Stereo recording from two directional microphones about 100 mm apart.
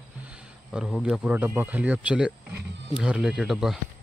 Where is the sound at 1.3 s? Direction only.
20° right (ahead or behind); by 3.7 s 5° right (ahead or behind).